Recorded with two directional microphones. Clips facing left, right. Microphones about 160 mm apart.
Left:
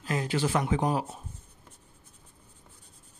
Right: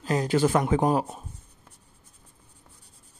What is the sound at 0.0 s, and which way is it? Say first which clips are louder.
Speech: right 6 dB; 35° right (ahead or behind).